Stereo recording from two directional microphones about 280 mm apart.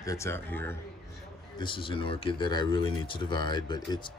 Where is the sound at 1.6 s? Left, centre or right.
Centre.